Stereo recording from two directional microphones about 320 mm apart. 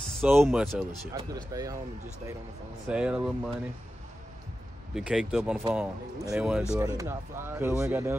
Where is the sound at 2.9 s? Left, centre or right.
Centre.